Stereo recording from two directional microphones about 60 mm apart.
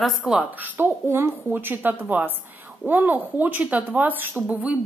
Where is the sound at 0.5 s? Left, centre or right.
Right.